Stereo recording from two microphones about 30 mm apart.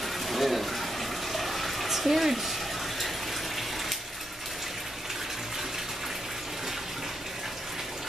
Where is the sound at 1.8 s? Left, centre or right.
Centre.